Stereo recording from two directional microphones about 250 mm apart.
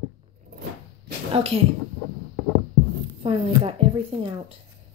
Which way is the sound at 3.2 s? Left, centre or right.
Right.